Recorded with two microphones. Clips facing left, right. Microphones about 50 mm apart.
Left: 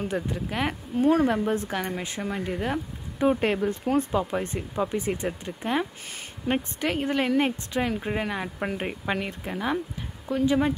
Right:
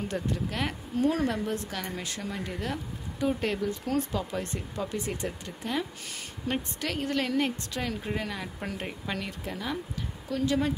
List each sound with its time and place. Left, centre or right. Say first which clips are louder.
0.0 s speech: left 2 dB; centre